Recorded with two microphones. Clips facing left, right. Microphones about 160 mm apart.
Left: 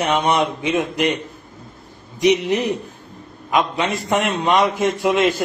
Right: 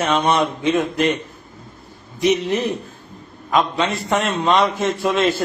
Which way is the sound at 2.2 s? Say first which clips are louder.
Left 1 dB; 15° left (ahead or behind).